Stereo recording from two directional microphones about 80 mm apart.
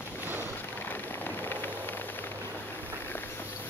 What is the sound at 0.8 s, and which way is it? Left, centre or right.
Vehicle, left.